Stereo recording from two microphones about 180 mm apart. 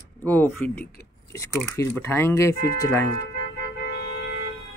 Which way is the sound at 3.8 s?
65° left (ahead or behind).